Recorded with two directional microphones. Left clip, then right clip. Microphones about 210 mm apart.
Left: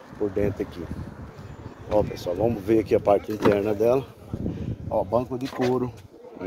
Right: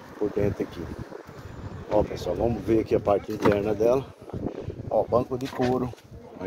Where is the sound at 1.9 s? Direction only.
10° left (ahead or behind).